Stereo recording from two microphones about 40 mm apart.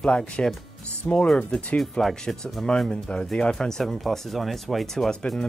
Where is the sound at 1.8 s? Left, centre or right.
Centre.